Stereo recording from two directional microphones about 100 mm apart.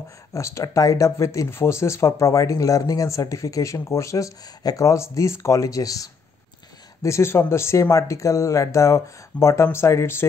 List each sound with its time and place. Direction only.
0.3 s speech: 30° left (ahead or behind)